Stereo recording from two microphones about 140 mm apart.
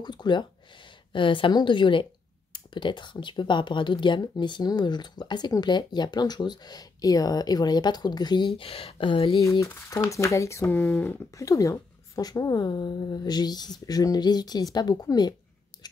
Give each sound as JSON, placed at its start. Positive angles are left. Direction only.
{"t": 0.0, "sound": "speech", "side_deg": 30}
{"t": 8.5, "sound": "speech", "side_deg": 45}
{"t": 9.4, "sound": "a woman's voice", "side_deg": 20}
{"t": 11.3, "sound": "a woman's voice", "side_deg": 25}
{"t": 15.7, "sound": "a sound", "side_deg": 30}